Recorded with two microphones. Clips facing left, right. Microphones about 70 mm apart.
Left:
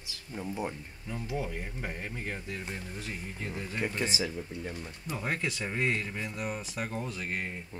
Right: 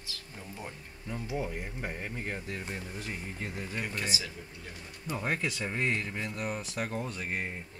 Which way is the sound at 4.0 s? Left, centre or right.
Left.